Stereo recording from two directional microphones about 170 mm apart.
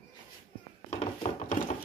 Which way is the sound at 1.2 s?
40° left (ahead or behind).